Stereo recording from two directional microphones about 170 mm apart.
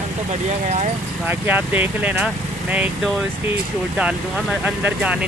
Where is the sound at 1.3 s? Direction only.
10° right (ahead or behind).